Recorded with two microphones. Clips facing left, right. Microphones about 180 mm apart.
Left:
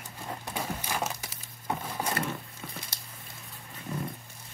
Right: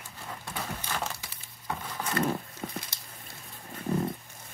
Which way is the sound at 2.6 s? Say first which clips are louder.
Right 7 dB; 40° right (ahead or behind).